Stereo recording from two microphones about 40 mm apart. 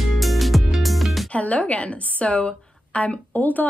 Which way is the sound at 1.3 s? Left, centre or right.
Left.